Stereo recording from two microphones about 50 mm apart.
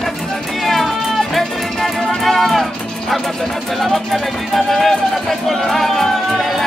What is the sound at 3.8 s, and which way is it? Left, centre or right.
Music, centre.